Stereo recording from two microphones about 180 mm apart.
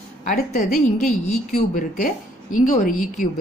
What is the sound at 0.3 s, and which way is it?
A woman's voice, 40° left (ahead or behind).